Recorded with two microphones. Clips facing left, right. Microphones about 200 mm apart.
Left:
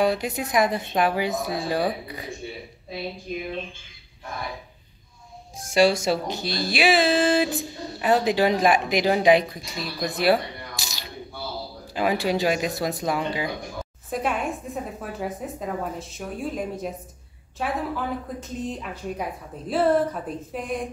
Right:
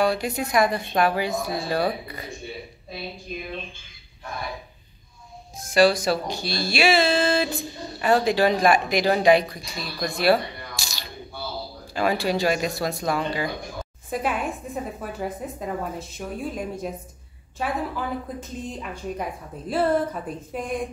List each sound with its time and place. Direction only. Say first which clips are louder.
0.0 s speech: even; 20° left (ahead or behind)
1.9 s a woman's voice: even; centre (ahead or behind)
5.6 s speech: right 1 dB; 25° left (ahead or behind)
10.1 s a sound: right 1 dB; 20° left (ahead or behind)
11.9 s speech: even; 20° left (ahead or behind)
14.1 s a woman's voice: even; centre (ahead or behind)